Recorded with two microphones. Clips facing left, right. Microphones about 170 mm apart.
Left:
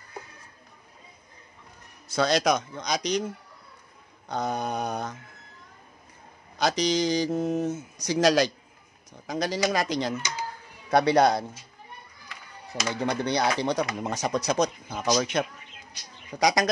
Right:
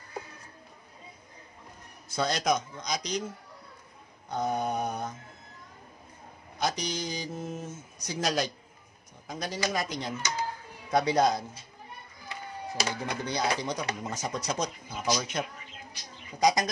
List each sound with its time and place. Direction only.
2.0 s speech: 85° left; by 3.3 s 70° left (ahead or behind)
4.3 s speech: 85° left
6.6 s speech: 85° left
10.9 s speech: 70° left (ahead or behind)
13.0 s speech: 70° left (ahead or behind)